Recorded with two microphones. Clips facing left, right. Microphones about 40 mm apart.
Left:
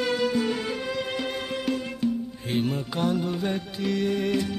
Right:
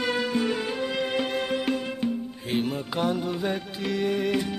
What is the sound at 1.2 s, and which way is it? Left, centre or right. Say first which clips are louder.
Music: right 3 dB; right.